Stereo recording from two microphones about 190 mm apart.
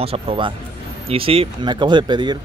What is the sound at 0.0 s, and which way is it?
Speech, 30° right (ahead or behind).